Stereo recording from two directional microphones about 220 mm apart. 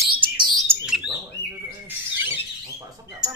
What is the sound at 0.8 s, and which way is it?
Bird, centre (ahead or behind).